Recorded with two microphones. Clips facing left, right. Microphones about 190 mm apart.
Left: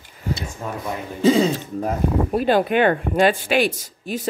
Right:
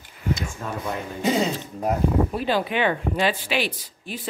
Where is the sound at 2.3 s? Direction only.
50° left (ahead or behind).